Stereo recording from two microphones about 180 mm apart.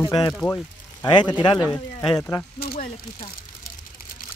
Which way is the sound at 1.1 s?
25° left (ahead or behind).